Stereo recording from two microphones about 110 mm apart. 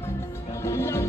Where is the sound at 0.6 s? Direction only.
25° left (ahead or behind).